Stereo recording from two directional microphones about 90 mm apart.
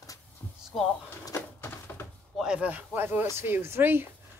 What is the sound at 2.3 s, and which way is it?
Speech, 10° right (ahead or behind).